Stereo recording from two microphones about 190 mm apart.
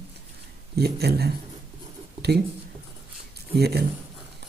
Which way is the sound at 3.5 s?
55° right (ahead or behind).